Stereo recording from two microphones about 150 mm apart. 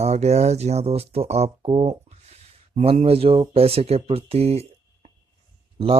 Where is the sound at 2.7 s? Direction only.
45° right (ahead or behind).